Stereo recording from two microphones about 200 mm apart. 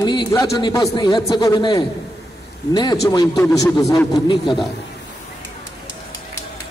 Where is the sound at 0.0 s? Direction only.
20° left (ahead or behind).